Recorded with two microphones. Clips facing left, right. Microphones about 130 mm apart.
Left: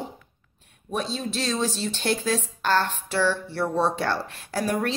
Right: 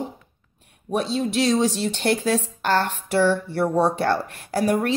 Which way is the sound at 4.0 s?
55° right (ahead or behind).